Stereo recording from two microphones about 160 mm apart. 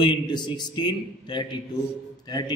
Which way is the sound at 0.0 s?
30° left (ahead or behind).